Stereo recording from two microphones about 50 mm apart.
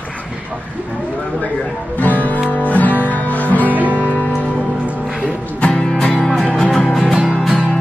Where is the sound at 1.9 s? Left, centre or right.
Left.